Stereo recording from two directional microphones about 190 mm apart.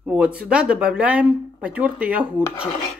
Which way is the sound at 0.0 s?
5° right (ahead or behind).